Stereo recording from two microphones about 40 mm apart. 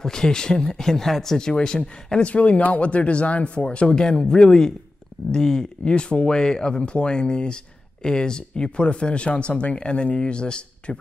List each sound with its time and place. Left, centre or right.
0.0 s speech: centre
1.5 s speech: centre
2.3 s speech: left
3.8 s speech: centre